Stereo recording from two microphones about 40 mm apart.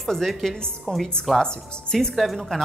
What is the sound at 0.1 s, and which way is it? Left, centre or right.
A woman's voice, centre.